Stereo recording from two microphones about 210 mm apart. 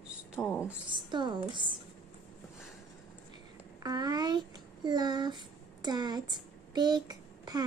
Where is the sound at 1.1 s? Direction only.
20° right (ahead or behind).